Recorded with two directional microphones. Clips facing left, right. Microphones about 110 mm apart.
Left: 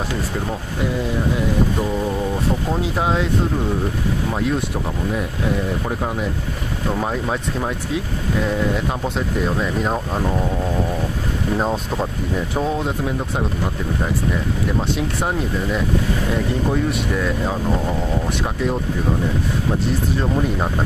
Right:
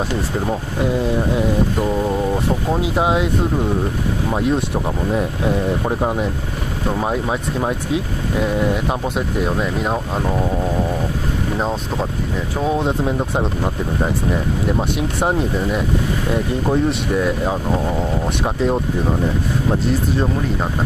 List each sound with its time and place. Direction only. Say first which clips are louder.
2.7 s speech: right 5 dB; 15° right (ahead or behind)
4.3 s speech: right 4 dB; 20° right (ahead or behind)
6.9 s speech: right 2 dB; 10° right (ahead or behind)
9.4 s speech: even; 10° right (ahead or behind)
11.5 s speech: left 2 dB; centre (ahead or behind)
12.6 s speech: right 7 dB; 20° right (ahead or behind)
15.1 s speech: right 3 dB; 20° right (ahead or behind)